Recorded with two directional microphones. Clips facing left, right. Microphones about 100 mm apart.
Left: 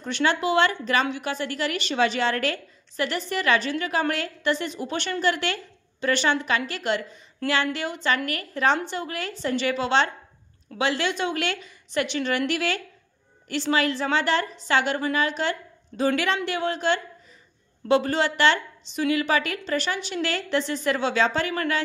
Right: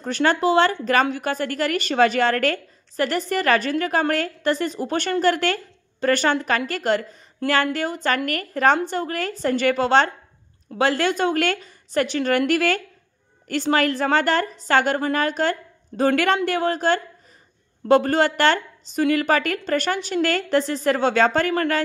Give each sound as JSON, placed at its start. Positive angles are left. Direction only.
{"t": 0.0, "sound": "a woman's voice", "side_deg": -40}